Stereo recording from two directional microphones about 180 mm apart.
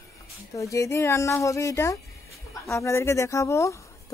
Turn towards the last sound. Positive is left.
turn(degrees=15)  # may be behind; listen again after turning